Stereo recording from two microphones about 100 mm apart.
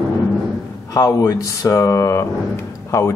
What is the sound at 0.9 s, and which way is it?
Speech, 30° left (ahead or behind).